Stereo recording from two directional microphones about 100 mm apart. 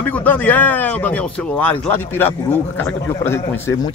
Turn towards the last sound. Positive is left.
turn(degrees=25)  # may be behind; listen again after turning